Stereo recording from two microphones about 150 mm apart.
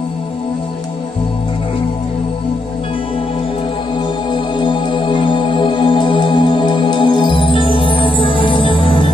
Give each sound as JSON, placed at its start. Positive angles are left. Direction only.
{"t": 4.3, "sound": "music", "side_deg": 30}